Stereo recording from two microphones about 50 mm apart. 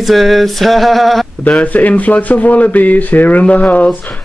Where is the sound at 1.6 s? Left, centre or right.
Left.